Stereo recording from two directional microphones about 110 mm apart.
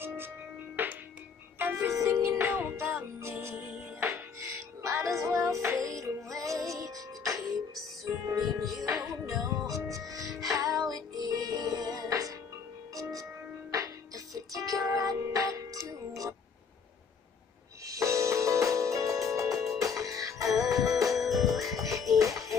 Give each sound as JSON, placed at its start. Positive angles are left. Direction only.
{"t": 0.8, "sound": "music", "side_deg": -15}
{"t": 17.8, "sound": "music", "side_deg": -30}
{"t": 19.5, "sound": "music", "side_deg": 0}
{"t": 19.8, "sound": "music", "side_deg": -30}
{"t": 20.4, "sound": "music", "side_deg": 0}
{"t": 20.8, "sound": "music", "side_deg": -30}
{"t": 21.1, "sound": "music", "side_deg": 0}
{"t": 21.8, "sound": "music", "side_deg": -30}